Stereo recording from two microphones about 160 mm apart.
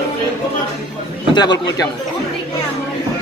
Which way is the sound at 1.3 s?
25° left (ahead or behind).